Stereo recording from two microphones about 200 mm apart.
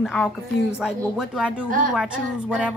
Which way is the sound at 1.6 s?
40° right (ahead or behind).